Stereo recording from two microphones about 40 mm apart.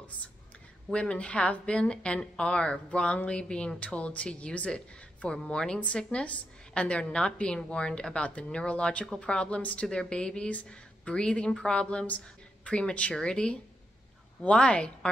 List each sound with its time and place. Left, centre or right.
0.9 s a woman's voice: left
5.8 s a woman's voice: left
9.6 s a woman's voice: left